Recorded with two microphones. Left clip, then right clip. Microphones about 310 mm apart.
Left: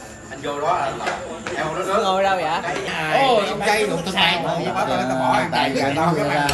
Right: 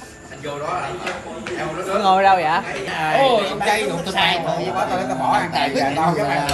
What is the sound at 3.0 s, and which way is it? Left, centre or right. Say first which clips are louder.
A man's voice: right 1 dB; centre.